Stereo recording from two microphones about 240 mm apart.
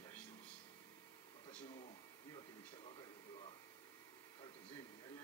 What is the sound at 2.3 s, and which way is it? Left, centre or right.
Television, centre.